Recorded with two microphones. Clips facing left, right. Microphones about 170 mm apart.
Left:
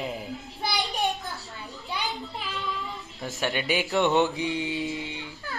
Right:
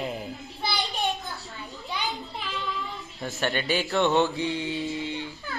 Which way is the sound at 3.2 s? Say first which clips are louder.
Right 1 dB; centre (ahead or behind).